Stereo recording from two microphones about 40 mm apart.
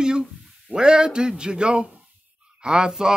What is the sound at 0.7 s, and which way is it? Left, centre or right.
A man's voice, right.